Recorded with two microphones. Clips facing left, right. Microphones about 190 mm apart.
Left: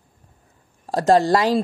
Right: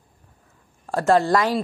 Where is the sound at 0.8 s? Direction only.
35° left (ahead or behind).